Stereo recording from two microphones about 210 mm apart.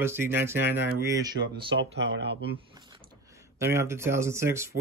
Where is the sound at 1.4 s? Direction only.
60° right (ahead or behind).